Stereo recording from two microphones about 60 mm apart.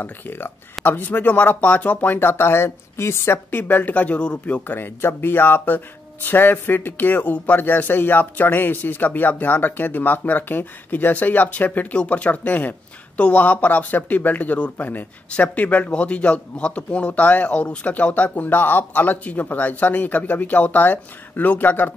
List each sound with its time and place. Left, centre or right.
0.0 s speech: left
3.5 s a man's voice: left
4.7 s a man's voice: left